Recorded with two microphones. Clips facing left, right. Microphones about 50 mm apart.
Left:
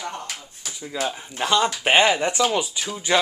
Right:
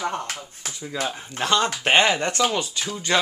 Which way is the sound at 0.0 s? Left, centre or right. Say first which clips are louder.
Right 4 dB; right.